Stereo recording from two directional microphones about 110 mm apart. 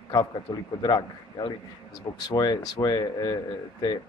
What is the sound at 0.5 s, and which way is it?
A man's voice, 40° left (ahead or behind).